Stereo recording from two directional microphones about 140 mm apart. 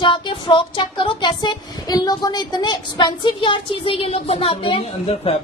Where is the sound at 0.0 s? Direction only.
35° left (ahead or behind).